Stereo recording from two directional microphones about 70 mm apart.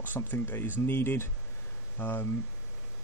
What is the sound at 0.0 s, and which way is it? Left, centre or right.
A man's voice, left.